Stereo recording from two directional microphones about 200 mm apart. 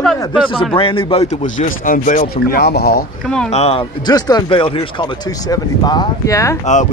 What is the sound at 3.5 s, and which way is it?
Speech, 30° left (ahead or behind).